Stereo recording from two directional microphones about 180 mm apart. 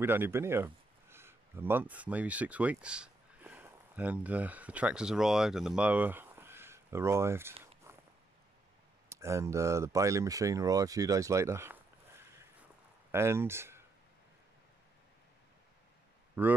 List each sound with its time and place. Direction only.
0.0 s speech: 10° right (ahead or behind)
7.9 s a sound: 15° right (ahead or behind)
9.1 s speech: 15° right (ahead or behind)
16.4 s speech: 10° right (ahead or behind)